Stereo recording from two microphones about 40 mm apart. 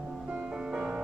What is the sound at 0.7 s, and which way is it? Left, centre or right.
Music, centre.